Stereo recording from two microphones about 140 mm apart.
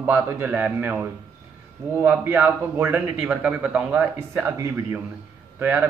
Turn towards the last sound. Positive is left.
turn(degrees=-15)  # may be behind; listen again after turning